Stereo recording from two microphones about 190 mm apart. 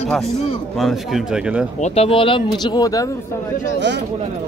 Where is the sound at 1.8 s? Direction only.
30° left (ahead or behind).